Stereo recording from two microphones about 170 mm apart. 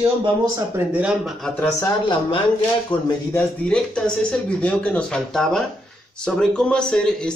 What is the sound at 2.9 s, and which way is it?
Speech, 30° left (ahead or behind).